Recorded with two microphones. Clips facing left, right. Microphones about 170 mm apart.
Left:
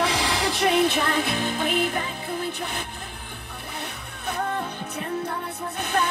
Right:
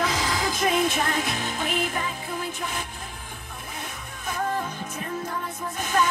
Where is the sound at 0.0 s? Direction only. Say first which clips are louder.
Left 2 dB; 80° left; by 2.0 s 60° left (ahead or behind).